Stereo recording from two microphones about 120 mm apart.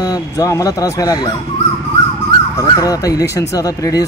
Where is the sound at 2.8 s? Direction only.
30° left (ahead or behind).